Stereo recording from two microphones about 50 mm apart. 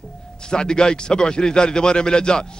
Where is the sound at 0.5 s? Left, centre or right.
Centre.